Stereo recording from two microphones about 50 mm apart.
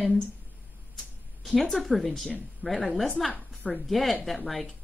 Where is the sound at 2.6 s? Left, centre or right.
Centre.